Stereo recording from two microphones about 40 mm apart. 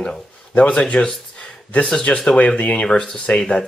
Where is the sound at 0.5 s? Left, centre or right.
Left.